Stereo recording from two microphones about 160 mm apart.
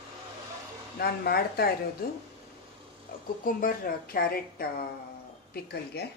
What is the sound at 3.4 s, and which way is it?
A woman's voice, 60° left (ahead or behind).